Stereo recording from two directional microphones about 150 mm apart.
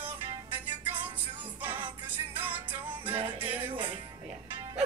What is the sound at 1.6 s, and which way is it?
Music, 15° right (ahead or behind).